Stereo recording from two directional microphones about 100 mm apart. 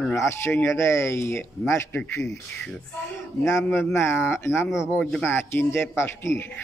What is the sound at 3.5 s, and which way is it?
Speech, 25° left (ahead or behind).